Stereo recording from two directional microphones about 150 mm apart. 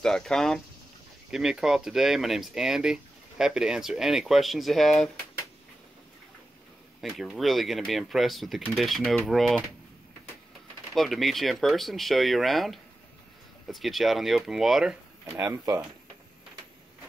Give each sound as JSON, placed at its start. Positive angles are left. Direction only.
{"t": 0.0, "sound": "speech", "side_deg": 5}
{"t": 7.0, "sound": "speech", "side_deg": 0}
{"t": 11.0, "sound": "speech", "side_deg": 0}
{"t": 15.2, "sound": "speech", "side_deg": -20}